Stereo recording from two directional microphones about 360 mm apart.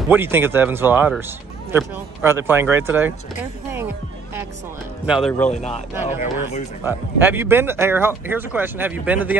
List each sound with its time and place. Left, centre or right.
0.1 s speech: centre
5.0 s speech: centre
5.5 s a man's voice: centre
6.8 s speech: centre